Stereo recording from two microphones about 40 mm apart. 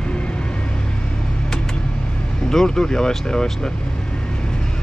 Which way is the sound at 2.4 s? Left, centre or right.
Centre.